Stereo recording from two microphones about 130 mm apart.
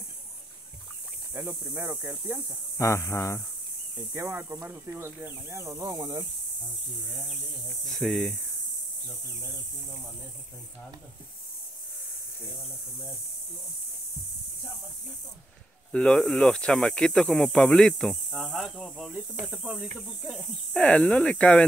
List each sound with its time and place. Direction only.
1.3 s speech: 20° right (ahead or behind)
2.8 s speech: 20° left (ahead or behind)
4.1 s speech: 20° right (ahead or behind)
7.9 s speech: 5° left (ahead or behind)
15.9 s speech: 5° left (ahead or behind)